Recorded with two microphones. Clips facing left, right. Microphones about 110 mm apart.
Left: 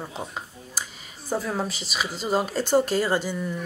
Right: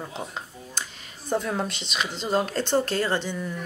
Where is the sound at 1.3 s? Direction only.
5° left (ahead or behind).